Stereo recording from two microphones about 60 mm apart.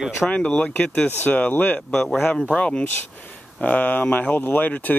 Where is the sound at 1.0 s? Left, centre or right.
Left.